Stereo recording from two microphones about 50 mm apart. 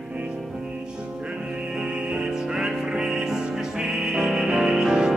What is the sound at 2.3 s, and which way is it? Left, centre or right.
Music, centre.